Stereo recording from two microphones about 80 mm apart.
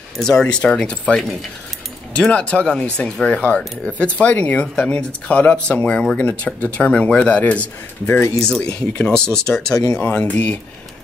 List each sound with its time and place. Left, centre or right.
0.2 s speech: centre
10.0 s speech: centre